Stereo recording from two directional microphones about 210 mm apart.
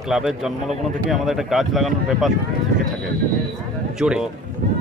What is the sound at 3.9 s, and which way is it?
Speech, 5° right (ahead or behind).